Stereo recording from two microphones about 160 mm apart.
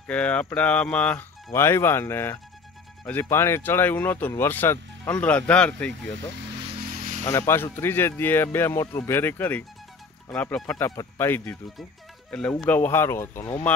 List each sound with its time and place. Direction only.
0.0 s speech: 10° left (ahead or behind)
6.9 s a sound: 55° right (ahead or behind)
7.2 s speech: 15° left (ahead or behind)